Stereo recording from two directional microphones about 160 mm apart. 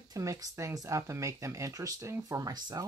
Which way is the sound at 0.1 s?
20° right (ahead or behind).